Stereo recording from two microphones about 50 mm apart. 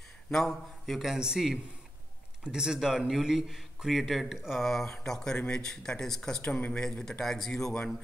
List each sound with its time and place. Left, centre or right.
0.3 s speech: centre
1.1 s a man's voice: centre
5.0 s speech: centre
6.4 s speech: centre